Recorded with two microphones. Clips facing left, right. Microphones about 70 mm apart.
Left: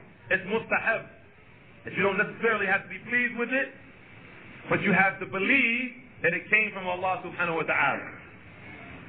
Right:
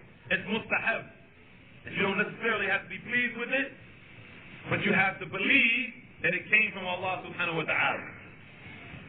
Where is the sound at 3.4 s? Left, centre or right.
Left.